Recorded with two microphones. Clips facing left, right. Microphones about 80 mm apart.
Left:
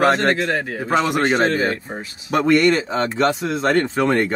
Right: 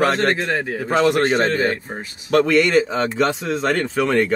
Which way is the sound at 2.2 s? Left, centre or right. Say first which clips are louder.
Even; centre.